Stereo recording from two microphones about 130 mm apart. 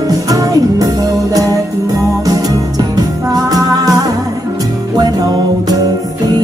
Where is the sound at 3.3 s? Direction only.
30° right (ahead or behind).